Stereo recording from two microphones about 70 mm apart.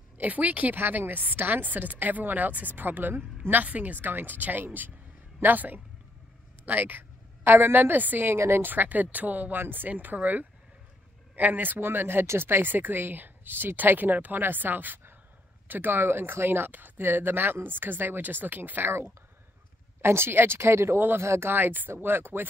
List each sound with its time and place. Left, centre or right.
0.2 s speech: right